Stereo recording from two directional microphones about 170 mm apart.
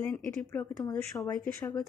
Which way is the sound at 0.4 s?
5° left (ahead or behind).